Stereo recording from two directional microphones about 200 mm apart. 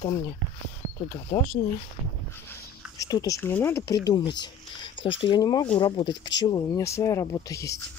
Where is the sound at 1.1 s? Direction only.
30° left (ahead or behind).